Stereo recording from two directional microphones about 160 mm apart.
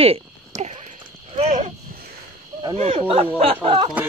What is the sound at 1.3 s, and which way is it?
Horse, 40° right (ahead or behind).